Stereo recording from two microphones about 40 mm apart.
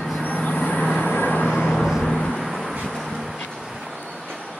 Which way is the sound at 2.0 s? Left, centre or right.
Centre.